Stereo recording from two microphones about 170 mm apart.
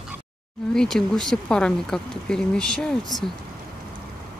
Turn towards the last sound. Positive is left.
turn(degrees=5)  # may be behind; listen again after turning